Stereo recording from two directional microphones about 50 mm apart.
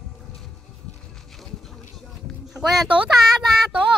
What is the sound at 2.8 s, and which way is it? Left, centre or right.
Speech, right.